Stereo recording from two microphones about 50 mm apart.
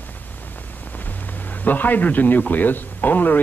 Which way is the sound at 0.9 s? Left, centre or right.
Left.